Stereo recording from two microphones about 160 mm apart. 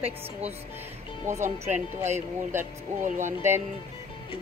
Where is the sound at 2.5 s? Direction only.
15° right (ahead or behind).